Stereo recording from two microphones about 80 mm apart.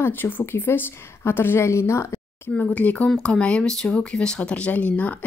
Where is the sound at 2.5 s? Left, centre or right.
Left.